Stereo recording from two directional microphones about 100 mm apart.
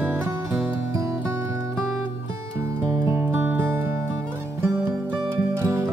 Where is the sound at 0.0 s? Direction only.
20° right (ahead or behind).